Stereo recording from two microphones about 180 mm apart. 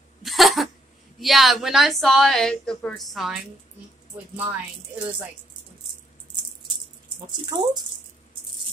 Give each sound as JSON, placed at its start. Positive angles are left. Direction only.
{"t": 0.2, "sound": "cough", "side_deg": 0}
{"t": 1.2, "sound": "a woman's voice", "side_deg": 0}
{"t": 7.4, "sound": "speech", "side_deg": -20}